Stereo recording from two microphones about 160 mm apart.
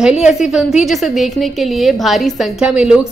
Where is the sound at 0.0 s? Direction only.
5° right (ahead or behind).